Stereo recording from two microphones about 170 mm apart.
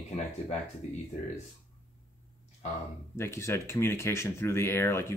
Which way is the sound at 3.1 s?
15° left (ahead or behind).